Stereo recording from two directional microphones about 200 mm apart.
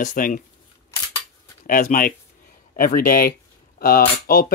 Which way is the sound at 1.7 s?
40° left (ahead or behind).